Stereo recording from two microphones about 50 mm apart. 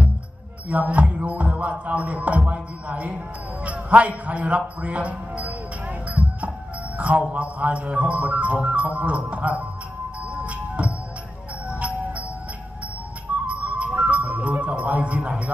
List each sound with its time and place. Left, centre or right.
0.7 s speech: right
1.1 s music: right
2.0 s a man's voice: right
10.3 s music: right
13.5 s music: right